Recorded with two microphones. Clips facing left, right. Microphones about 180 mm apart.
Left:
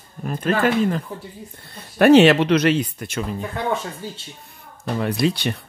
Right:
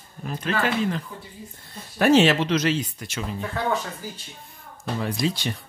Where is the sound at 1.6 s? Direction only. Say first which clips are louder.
Left 6 dB; 65° left (ahead or behind).